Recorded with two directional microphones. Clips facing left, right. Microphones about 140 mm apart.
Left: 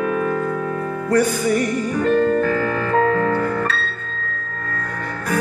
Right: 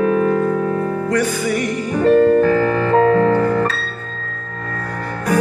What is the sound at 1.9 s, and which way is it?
Music, 35° right (ahead or behind).